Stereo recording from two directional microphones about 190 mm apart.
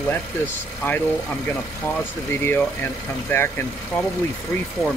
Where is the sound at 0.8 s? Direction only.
10° left (ahead or behind).